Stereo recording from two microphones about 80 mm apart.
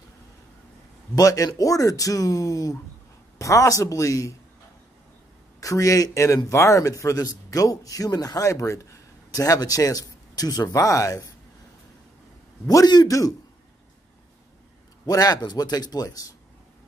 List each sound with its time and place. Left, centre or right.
1.1 s a man's voice: left
5.6 s a man's voice: left
12.6 s a man's voice: left
15.0 s a man's voice: left